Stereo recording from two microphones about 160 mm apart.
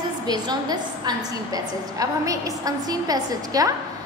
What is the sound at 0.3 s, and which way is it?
A woman's voice, 25° right (ahead or behind).